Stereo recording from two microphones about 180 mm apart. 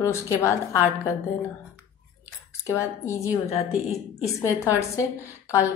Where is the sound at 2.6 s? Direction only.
15° left (ahead or behind).